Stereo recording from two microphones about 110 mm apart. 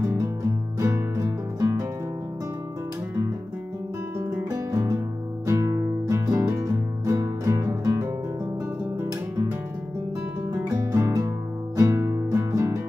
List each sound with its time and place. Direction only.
0.7 s music: 25° right (ahead or behind)
4.2 s music: 20° right (ahead or behind)
10.5 s music: 25° right (ahead or behind)